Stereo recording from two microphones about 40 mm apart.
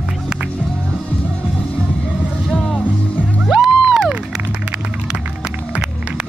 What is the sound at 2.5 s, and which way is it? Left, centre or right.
Music, centre.